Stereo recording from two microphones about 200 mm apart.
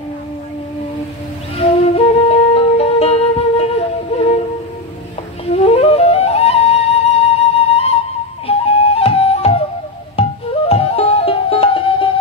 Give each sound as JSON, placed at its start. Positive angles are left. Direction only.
{"t": 1.6, "sound": "music", "side_deg": 30}
{"t": 5.5, "sound": "flute", "side_deg": 30}
{"t": 10.7, "sound": "music", "side_deg": 30}